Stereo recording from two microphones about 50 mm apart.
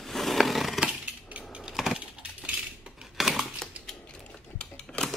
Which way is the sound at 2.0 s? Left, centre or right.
Right.